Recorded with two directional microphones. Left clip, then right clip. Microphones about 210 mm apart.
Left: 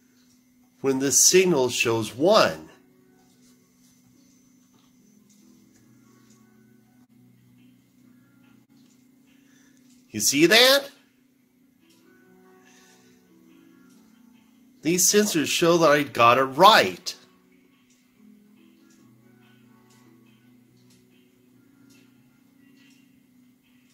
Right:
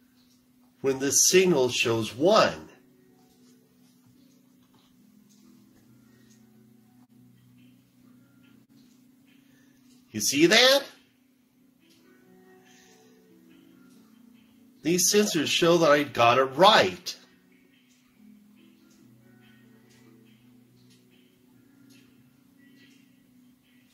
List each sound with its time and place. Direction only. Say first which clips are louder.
0.7 s speech: left 3 dB; 25° left (ahead or behind)
10.1 s speech: left 3 dB; 25° left (ahead or behind)
14.8 s speech: left 2 dB; 20° left (ahead or behind)